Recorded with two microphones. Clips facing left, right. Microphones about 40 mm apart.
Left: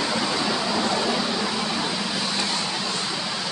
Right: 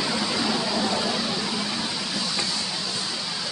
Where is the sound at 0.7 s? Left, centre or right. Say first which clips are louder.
Left 2 dB; centre.